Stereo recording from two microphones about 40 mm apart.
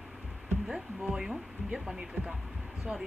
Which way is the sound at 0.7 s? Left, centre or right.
Centre.